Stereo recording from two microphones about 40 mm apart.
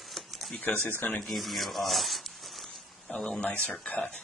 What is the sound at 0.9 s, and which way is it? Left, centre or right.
Speech, left.